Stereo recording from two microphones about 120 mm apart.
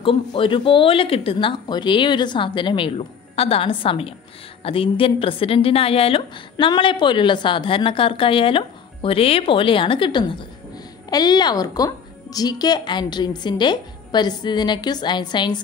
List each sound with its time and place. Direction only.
0.0 s speech: 45° left (ahead or behind)
6.5 s speech: 40° left (ahead or behind)